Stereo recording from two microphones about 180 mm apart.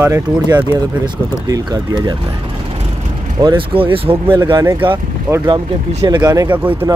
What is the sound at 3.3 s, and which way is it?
Speech, 25° right (ahead or behind).